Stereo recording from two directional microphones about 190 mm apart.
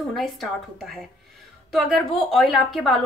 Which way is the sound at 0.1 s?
Centre (ahead or behind).